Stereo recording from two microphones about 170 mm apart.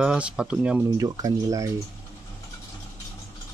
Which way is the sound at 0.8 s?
20° right (ahead or behind).